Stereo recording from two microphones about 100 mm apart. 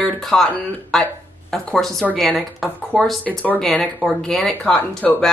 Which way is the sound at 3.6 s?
5° left (ahead or behind).